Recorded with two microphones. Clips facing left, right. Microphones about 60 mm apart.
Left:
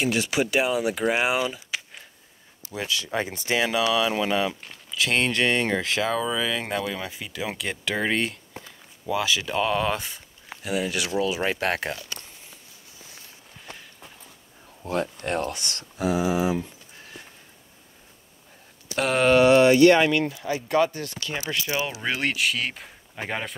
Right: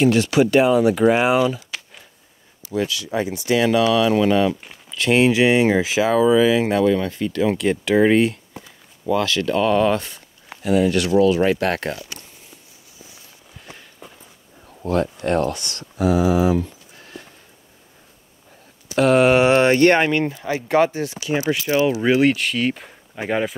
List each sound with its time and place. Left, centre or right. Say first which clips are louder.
0.0 s speech: right 8 dB; centre
2.9 s speech: right 4 dB; left
3.5 s speech: right 6 dB; centre
15.2 s speech: right 7 dB; centre
15.7 s speech: right 6 dB; right
16.2 s speech: right 6 dB; centre
18.9 s speech: right 8 dB; centre
19.2 s speech: right 2 dB; right
19.5 s speech: right 1 dB; right
20.9 s speech: right 9 dB; centre
21.7 s speech: right 13 dB; centre